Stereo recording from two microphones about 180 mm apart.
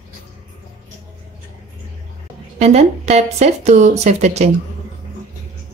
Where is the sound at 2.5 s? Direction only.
40° right (ahead or behind).